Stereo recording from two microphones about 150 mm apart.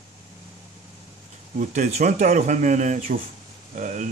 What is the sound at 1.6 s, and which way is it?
A man's voice, 55° right (ahead or behind).